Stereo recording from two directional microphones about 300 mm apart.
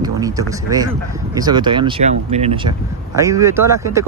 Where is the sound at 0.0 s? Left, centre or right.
Centre.